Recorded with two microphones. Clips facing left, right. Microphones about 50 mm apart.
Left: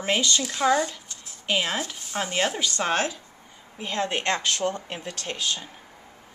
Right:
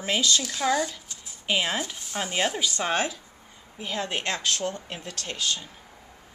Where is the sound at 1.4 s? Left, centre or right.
Centre.